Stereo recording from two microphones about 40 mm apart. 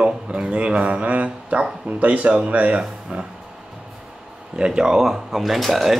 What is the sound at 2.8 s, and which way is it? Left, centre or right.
Speech, right.